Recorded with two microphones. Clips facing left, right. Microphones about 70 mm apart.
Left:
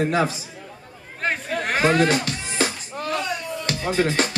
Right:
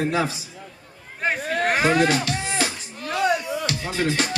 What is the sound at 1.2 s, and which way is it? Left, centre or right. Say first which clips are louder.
Chatter: right 2 dB; centre.